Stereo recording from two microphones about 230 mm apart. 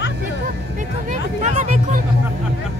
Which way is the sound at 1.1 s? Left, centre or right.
Right.